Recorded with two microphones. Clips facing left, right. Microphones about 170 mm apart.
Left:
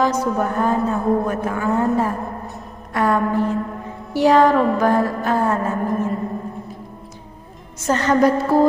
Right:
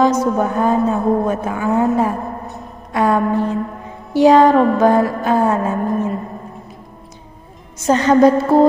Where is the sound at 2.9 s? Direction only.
20° right (ahead or behind).